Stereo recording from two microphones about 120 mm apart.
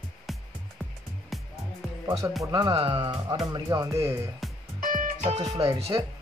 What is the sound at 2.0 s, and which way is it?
A man's voice, 25° right (ahead or behind).